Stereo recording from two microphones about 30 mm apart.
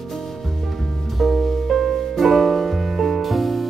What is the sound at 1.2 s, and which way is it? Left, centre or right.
Music, centre.